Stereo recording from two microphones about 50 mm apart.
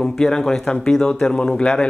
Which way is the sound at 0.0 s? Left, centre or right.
Centre.